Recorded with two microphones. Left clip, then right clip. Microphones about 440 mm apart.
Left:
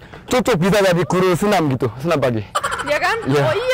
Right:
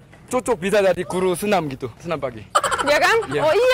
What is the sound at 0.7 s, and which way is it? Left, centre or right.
Speech, left.